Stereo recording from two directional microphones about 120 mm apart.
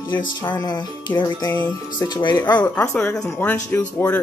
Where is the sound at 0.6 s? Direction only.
40° left (ahead or behind).